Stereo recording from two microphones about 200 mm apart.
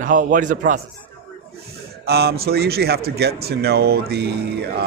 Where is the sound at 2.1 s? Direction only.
55° right (ahead or behind).